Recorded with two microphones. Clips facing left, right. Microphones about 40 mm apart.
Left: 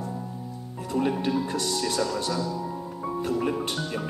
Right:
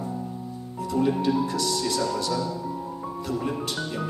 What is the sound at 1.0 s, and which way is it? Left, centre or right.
Speech, left.